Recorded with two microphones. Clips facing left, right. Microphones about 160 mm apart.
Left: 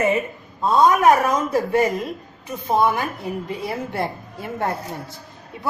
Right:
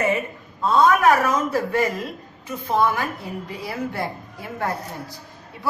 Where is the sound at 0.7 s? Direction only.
20° left (ahead or behind).